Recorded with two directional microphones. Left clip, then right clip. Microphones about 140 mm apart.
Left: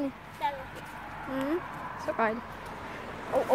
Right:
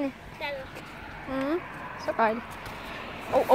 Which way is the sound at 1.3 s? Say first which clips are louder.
Right 2 dB; 10° left (ahead or behind).